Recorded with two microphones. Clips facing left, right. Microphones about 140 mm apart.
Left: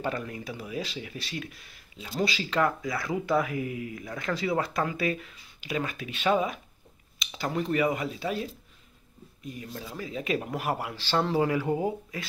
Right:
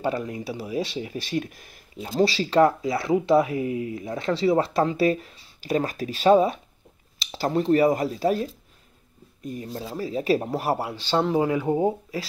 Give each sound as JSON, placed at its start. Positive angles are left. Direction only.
{"t": 0.5, "sound": "speech", "side_deg": -35}
{"t": 2.1, "sound": "speech", "side_deg": -30}
{"t": 11.7, "sound": "speech", "side_deg": -30}